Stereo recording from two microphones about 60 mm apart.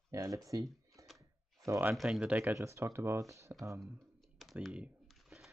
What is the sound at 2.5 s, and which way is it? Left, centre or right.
Speech, right.